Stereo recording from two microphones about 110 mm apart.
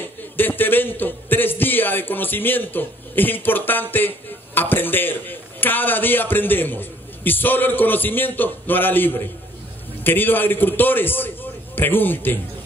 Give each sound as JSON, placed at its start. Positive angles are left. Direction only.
{"t": 0.4, "sound": "a man's voice", "side_deg": 20}